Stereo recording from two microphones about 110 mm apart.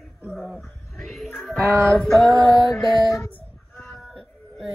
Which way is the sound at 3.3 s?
15° left (ahead or behind).